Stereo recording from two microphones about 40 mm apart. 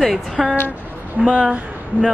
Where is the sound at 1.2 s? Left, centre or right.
Right.